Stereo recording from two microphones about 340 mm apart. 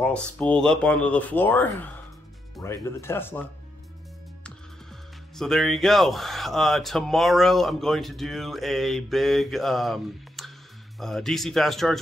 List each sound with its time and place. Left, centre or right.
0.0 s speech: centre
5.3 s speech: centre